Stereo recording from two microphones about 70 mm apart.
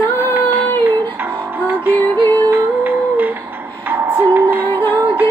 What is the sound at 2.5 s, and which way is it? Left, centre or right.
Humming, right.